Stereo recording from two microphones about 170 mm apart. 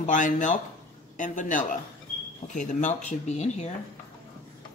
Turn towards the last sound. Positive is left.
turn(degrees=40)  # may be behind; listen again after turning